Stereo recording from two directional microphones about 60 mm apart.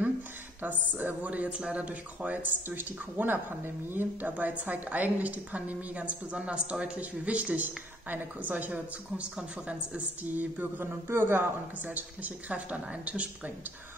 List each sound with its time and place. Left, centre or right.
0.6 s a man's voice: right
11.8 s speech: right